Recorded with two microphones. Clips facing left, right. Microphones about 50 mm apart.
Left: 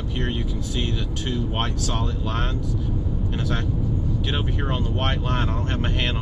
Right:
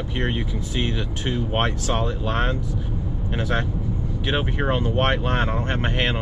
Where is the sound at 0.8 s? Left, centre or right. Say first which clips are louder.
Right 3 dB; right.